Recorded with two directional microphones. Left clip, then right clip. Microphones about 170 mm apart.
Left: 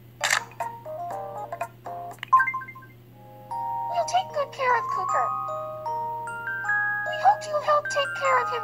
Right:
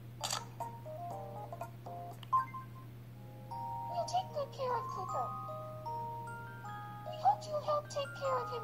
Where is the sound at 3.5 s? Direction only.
25° left (ahead or behind).